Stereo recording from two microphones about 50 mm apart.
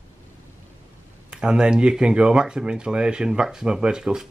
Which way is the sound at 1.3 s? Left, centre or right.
Centre.